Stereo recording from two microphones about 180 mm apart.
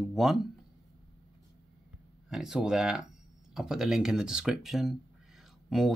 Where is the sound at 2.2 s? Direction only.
5° right (ahead or behind).